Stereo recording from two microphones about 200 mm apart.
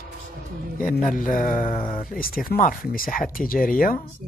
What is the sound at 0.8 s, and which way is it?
Speech, 40° left (ahead or behind).